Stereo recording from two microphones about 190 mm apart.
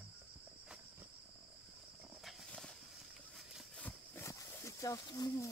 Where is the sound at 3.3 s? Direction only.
5° left (ahead or behind).